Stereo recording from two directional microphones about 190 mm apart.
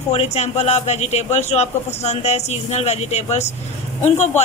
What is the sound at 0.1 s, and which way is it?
Speech, 35° left (ahead or behind).